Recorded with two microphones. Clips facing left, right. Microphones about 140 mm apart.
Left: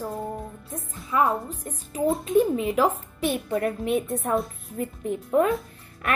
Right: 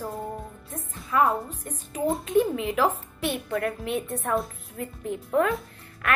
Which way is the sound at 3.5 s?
25° left (ahead or behind).